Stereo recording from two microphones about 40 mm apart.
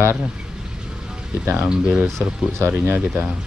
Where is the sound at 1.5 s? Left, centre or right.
Right.